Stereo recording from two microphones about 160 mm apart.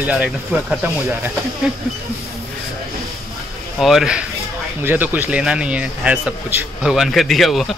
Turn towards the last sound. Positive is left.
turn(degrees=0)  # may be behind; listen again after turning